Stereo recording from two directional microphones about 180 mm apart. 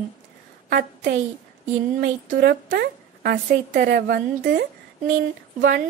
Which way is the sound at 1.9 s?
55° right (ahead or behind).